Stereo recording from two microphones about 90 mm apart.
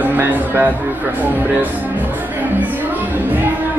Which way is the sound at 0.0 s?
20° right (ahead or behind).